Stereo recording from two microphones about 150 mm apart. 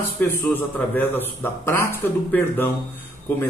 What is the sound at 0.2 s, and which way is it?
Speech, 10° left (ahead or behind).